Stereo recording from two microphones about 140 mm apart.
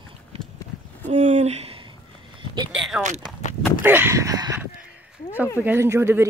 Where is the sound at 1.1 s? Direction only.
55° right (ahead or behind).